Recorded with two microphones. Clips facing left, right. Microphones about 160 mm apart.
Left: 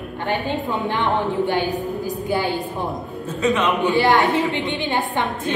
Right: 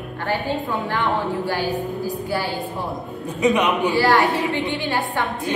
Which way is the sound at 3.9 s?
20° left (ahead or behind).